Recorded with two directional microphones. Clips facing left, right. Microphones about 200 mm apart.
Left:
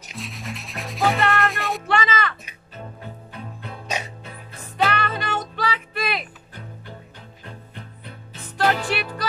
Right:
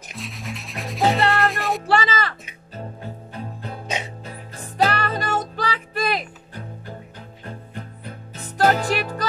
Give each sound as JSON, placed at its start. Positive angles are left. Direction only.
{"t": 0.1, "sound": "sanding", "side_deg": 0}
{"t": 1.4, "sound": "music", "side_deg": 0}
{"t": 1.9, "sound": "a sound", "side_deg": -35}
{"t": 2.7, "sound": "music", "side_deg": -35}
{"t": 3.8, "sound": "music", "side_deg": -25}
{"t": 4.2, "sound": "music", "side_deg": -40}